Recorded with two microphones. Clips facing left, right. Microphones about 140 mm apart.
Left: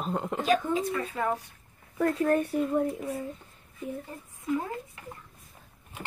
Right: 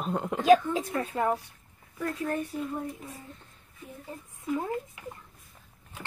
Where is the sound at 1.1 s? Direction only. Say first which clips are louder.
Right 3 dB; 25° right (ahead or behind).